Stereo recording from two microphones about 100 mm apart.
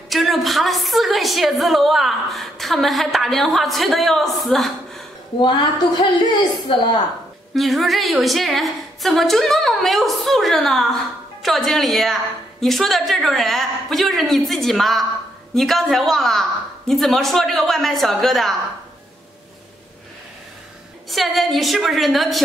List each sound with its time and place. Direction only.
0.1 s a woman's voice: centre (ahead or behind)
5.4 s a woman's voice: 50° left (ahead or behind)
7.5 s a woman's voice: centre (ahead or behind)
21.1 s a woman's voice: centre (ahead or behind)